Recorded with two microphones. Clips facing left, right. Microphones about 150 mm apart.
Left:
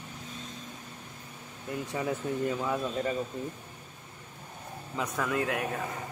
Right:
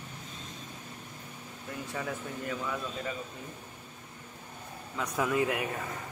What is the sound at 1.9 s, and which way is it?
Speech, 25° left (ahead or behind).